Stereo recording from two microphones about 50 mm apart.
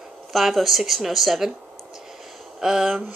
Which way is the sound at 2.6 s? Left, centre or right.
Centre.